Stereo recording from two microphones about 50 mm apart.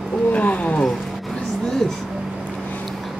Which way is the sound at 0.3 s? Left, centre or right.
Left.